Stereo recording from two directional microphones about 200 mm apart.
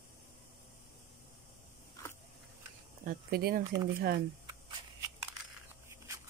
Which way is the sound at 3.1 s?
50° right (ahead or behind).